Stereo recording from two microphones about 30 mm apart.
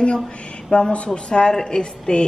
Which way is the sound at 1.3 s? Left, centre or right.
Left.